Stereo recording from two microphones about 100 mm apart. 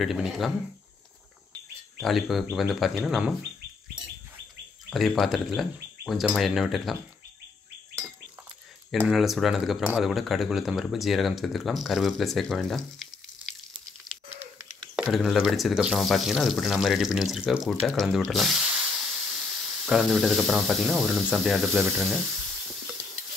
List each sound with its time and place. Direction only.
0.0 s speech: 5° right (ahead or behind)
2.0 s speech: centre (ahead or behind)
4.8 s speech: centre (ahead or behind)
9.1 s speech: centre (ahead or behind)
15.0 s speech: 5° right (ahead or behind)
18.3 s hiss: centre (ahead or behind)
20.8 s speech: 5° right (ahead or behind)
22.6 s a sound: centre (ahead or behind)